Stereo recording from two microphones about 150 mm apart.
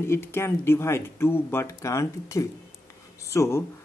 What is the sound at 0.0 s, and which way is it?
Speech, 15° left (ahead or behind).